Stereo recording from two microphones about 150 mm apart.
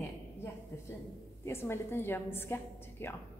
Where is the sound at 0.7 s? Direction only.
15° left (ahead or behind).